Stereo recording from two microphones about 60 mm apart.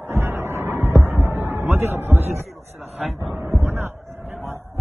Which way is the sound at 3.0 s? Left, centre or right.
Centre.